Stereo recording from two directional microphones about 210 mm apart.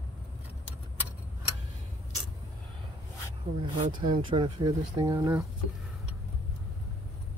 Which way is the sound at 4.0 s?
25° right (ahead or behind).